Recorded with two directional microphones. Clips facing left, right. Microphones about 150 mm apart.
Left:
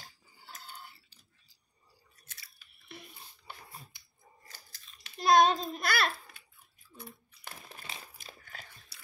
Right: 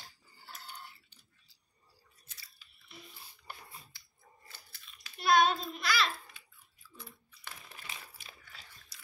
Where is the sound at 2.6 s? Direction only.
60° left (ahead or behind).